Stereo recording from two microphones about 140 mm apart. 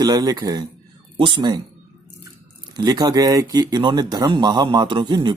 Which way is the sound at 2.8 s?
25° right (ahead or behind).